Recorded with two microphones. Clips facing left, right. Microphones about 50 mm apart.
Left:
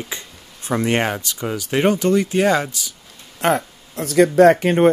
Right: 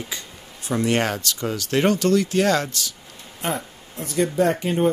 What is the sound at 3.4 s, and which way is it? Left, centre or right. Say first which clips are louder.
Speech: left 8 dB; left.